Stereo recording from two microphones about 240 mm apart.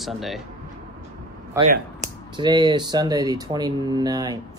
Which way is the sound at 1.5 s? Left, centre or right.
Centre.